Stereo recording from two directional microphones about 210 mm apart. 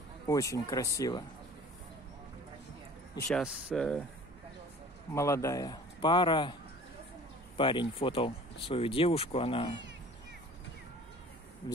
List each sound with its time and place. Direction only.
0.3 s speech: 15° left (ahead or behind)
3.3 s speech: centre (ahead or behind)
5.1 s a man's voice: 15° left (ahead or behind)
7.5 s a man's voice: 25° left (ahead or behind)
11.6 s speech: 20° left (ahead or behind)